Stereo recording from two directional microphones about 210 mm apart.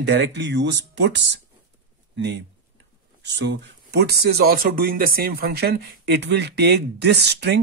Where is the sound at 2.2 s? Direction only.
55° right (ahead or behind).